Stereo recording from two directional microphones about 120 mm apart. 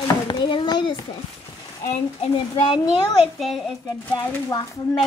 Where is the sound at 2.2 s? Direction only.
50° left (ahead or behind).